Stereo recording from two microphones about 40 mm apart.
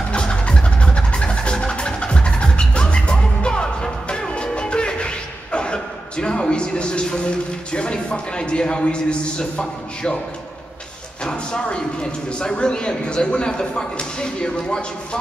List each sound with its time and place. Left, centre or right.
0.1 s vehicle: left
11.2 s a man's voice: left